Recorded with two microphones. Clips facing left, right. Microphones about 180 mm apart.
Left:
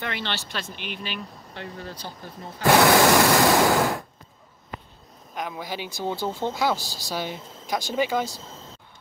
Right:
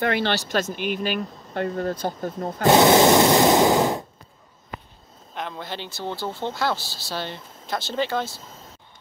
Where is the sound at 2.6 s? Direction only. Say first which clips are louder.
Right 2 dB; 20° right (ahead or behind).